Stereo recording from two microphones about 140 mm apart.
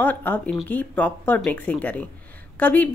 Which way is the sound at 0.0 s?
10° left (ahead or behind).